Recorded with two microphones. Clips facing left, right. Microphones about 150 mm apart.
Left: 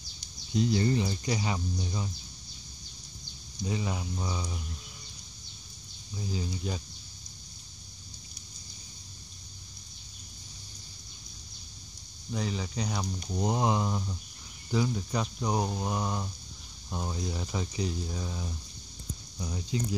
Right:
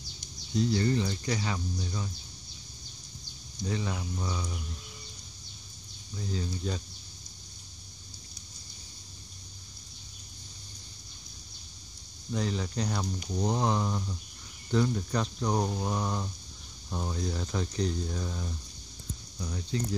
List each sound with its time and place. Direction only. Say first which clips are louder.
0.6 s speech: even; 20° left (ahead or behind)
3.6 s speech: even; 15° left (ahead or behind)
6.1 s speech: even; 10° left (ahead or behind)
12.3 s speech: right 2 dB; 5° left (ahead or behind)